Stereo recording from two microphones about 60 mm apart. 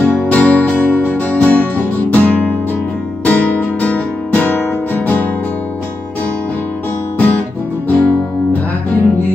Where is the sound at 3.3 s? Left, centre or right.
Left.